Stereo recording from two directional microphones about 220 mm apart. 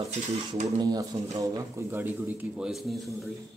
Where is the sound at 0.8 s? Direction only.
15° right (ahead or behind).